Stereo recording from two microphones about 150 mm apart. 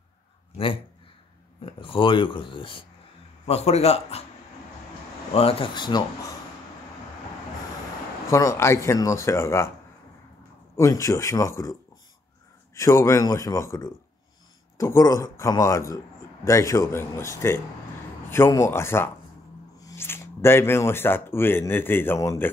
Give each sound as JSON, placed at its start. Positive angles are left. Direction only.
{"t": 1.7, "sound": "a man's voice", "side_deg": 35}
{"t": 5.3, "sound": "speech", "side_deg": 40}
{"t": 8.3, "sound": "speech", "side_deg": 20}
{"t": 10.8, "sound": "a man's voice", "side_deg": 20}